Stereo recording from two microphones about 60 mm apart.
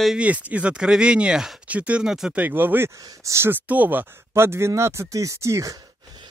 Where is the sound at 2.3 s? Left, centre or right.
Right.